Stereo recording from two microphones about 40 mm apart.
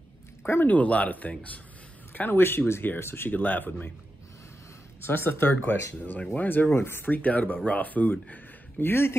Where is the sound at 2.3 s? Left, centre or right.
Left.